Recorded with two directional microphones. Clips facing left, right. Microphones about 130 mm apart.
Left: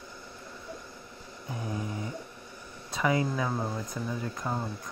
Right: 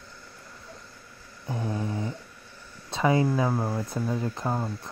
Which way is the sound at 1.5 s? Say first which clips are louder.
Right 5 dB; 30° right (ahead or behind).